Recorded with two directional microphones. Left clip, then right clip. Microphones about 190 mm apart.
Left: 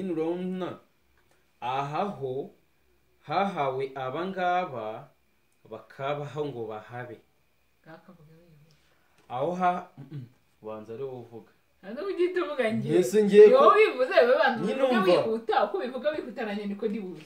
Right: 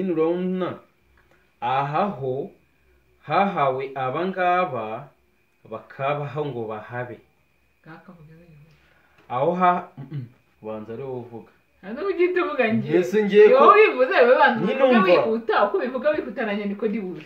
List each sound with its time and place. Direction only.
0.0 s speech: 20° left (ahead or behind)
9.3 s speech: 15° left (ahead or behind)
11.8 s a woman's voice: 10° right (ahead or behind)
12.8 s speech: 15° left (ahead or behind)
13.5 s a woman's voice: 5° right (ahead or behind)
14.6 s speech: 15° left (ahead or behind)
15.4 s a woman's voice: 10° right (ahead or behind)